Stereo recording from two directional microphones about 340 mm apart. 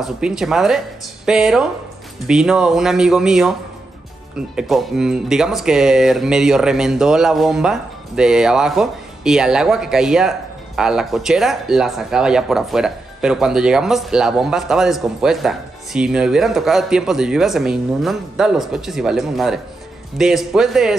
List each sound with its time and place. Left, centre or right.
0.0 s speech: centre